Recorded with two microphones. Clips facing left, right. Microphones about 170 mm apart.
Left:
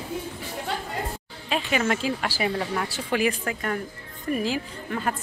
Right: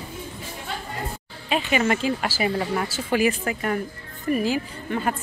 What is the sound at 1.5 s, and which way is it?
Speech, centre (ahead or behind).